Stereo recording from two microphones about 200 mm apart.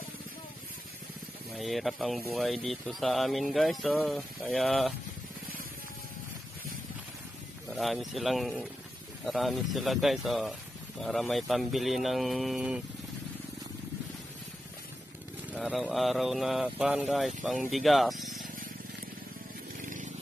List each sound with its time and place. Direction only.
1.6 s speech: centre (ahead or behind)
7.7 s speech: centre (ahead or behind)
15.5 s speech: centre (ahead or behind)
19.8 s a sound: 40° right (ahead or behind)